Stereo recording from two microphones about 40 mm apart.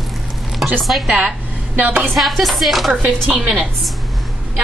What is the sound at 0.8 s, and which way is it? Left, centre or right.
Music, centre.